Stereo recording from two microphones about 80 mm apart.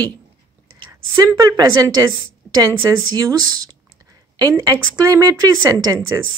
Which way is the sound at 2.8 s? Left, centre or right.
Right.